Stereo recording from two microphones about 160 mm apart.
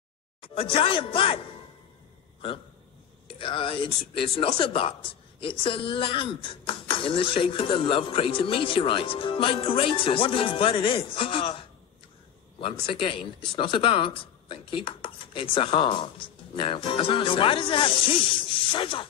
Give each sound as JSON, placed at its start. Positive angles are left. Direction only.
{"t": 0.4, "sound": "speech", "side_deg": 35}
{"t": 3.3, "sound": "speech", "side_deg": 35}
{"t": 12.8, "sound": "speech", "side_deg": 30}